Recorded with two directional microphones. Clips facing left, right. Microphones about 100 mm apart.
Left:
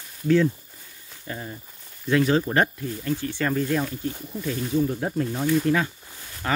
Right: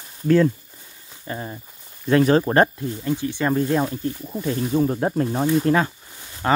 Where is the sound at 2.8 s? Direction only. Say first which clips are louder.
Right 3 dB; 20° right (ahead or behind).